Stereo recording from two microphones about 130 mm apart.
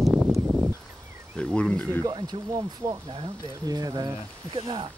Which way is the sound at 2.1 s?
30° right (ahead or behind).